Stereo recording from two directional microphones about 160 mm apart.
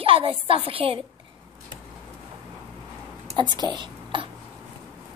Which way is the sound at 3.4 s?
25° right (ahead or behind).